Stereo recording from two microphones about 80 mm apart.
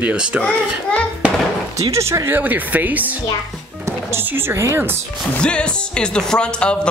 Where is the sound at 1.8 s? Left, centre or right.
Right.